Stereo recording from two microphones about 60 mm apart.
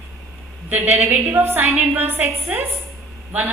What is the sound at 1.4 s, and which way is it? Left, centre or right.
Speech, right.